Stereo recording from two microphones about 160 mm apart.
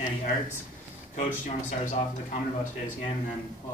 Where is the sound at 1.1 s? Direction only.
50° left (ahead or behind).